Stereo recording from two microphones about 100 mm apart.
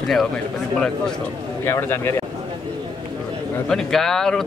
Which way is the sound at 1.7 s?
25° left (ahead or behind).